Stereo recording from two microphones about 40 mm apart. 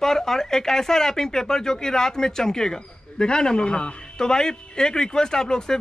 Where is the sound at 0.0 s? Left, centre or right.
Centre.